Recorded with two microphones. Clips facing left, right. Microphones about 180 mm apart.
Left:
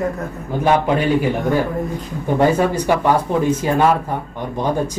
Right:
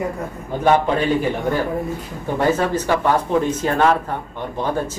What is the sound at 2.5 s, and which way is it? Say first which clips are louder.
Speech: left 2 dB; 10° left (ahead or behind).